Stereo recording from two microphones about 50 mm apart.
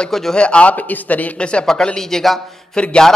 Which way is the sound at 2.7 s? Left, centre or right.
Centre.